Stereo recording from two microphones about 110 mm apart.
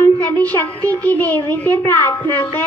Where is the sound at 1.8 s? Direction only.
30° left (ahead or behind).